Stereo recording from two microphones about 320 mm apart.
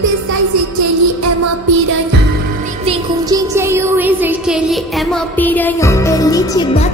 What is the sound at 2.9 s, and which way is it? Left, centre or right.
Music, centre.